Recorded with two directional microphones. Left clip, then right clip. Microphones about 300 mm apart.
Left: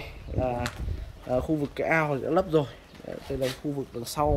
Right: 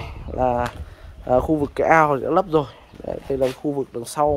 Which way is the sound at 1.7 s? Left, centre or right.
Centre.